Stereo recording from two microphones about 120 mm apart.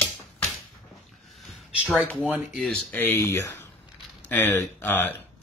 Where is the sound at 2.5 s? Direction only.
5° left (ahead or behind).